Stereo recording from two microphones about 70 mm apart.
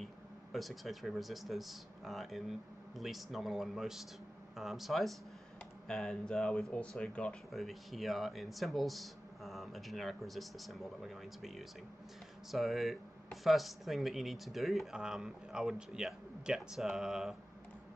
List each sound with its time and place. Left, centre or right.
0.0 s speech: centre
7.5 s speech: centre